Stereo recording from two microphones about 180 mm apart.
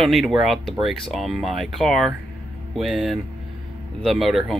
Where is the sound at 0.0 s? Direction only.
Centre (ahead or behind).